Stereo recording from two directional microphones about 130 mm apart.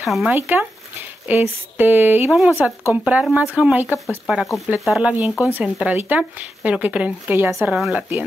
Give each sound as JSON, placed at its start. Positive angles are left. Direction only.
{"t": 0.0, "sound": "speech", "side_deg": 0}
{"t": 0.3, "sound": "speech", "side_deg": -15}
{"t": 4.3, "sound": "speech", "side_deg": 0}
{"t": 7.7, "sound": "speech", "side_deg": -5}